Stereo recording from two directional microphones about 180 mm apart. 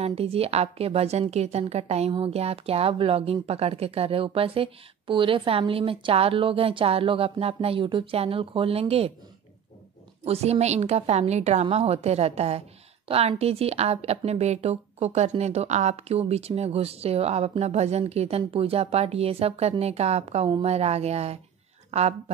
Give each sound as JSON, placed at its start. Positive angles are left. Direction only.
{"t": 0.0, "sound": "a woman's voice", "side_deg": -35}
{"t": 10.2, "sound": "a woman's voice", "side_deg": -35}